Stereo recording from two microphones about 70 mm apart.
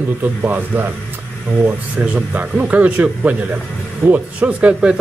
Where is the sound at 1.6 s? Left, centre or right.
Centre.